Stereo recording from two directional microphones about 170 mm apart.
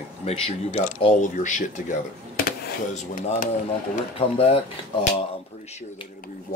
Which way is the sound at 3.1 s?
50° left (ahead or behind).